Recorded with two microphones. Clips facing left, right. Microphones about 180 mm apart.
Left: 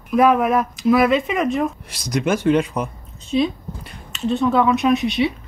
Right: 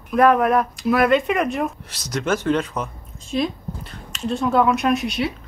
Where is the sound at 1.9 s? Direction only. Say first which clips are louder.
Left 3 dB; 10° left (ahead or behind).